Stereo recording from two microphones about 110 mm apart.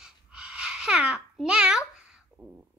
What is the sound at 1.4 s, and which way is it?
Babbling, 10° right (ahead or behind).